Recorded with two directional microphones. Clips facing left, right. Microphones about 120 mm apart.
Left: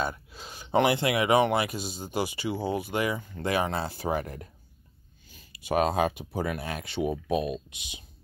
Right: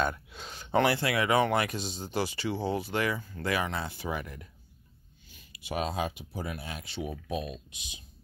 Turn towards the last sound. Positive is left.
turn(degrees=65)  # may be behind; listen again after turning